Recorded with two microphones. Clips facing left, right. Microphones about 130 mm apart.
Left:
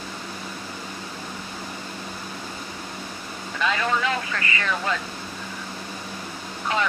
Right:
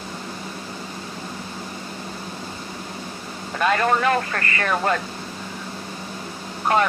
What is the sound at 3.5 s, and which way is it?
Speech, 50° right (ahead or behind).